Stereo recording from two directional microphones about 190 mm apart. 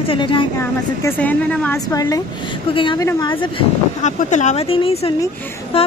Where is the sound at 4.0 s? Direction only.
40° left (ahead or behind).